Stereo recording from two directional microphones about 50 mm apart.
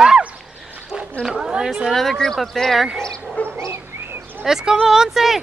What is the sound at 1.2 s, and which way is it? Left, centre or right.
Speech, centre.